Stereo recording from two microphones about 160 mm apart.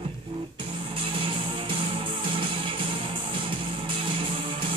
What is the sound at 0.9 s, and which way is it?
Music, 35° right (ahead or behind).